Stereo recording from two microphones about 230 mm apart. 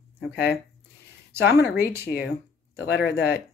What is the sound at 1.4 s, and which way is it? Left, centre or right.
Speech, left.